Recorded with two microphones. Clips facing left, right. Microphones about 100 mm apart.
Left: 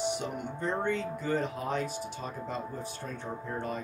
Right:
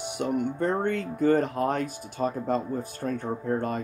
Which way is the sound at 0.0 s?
50° right (ahead or behind).